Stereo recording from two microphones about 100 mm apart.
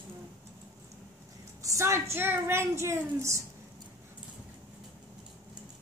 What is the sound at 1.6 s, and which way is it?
A woman's voice, 30° right (ahead or behind).